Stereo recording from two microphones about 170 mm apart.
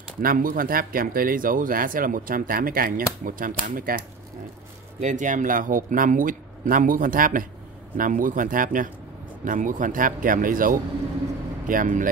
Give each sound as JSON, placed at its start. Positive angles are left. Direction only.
{"t": 0.2, "sound": "speech", "side_deg": -55}
{"t": 5.0, "sound": "a man's voice", "side_deg": -50}